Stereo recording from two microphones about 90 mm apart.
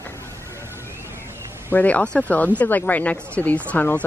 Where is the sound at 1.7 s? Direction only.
15° left (ahead or behind).